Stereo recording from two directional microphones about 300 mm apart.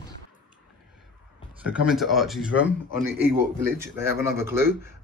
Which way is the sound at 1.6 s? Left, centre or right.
Centre.